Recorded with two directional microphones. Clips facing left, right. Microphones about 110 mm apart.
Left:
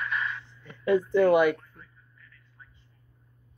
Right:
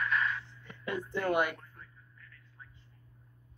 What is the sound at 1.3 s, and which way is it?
Speech, 90° left.